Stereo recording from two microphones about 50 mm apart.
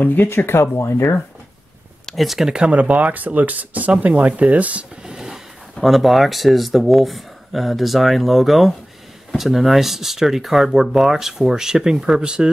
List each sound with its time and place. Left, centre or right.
0.0 s speech: left
2.0 s speech: centre
2.7 s speech: right
5.0 s a sound: centre
5.8 s speech: centre